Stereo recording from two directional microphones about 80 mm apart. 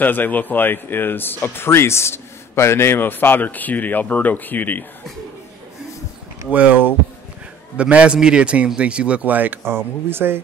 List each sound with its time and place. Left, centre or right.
0.0 s speech: left
7.7 s a man's voice: centre